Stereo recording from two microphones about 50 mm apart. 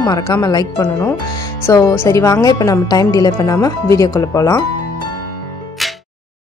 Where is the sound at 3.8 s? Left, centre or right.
Left.